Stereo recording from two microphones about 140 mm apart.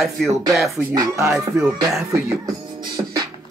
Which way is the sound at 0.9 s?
20° right (ahead or behind).